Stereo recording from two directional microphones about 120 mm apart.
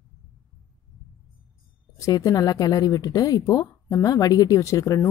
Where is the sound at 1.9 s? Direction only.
30° left (ahead or behind).